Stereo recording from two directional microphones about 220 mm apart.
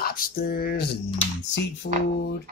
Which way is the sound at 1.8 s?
50° left (ahead or behind).